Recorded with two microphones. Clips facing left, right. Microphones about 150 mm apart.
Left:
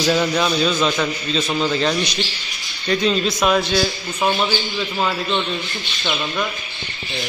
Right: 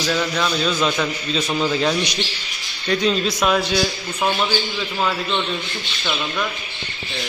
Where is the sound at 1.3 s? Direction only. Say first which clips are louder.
Even; 5° right (ahead or behind).